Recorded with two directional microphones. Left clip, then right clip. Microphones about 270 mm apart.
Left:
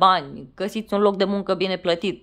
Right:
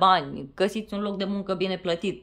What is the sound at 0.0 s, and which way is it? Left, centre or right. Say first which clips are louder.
Speech: left 3 dB; centre.